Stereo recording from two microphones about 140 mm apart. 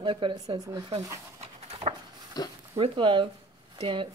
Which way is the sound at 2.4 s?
30° left (ahead or behind).